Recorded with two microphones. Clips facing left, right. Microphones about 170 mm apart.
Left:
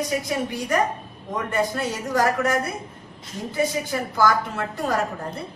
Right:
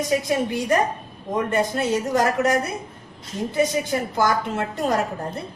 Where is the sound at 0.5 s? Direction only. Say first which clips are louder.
Right 2 dB; 25° right (ahead or behind).